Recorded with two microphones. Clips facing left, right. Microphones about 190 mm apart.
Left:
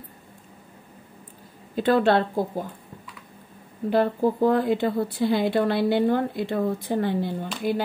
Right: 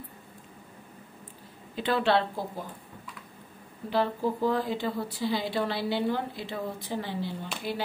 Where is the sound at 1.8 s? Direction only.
45° left (ahead or behind).